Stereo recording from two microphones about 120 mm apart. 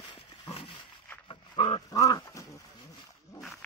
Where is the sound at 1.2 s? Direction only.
50° left (ahead or behind).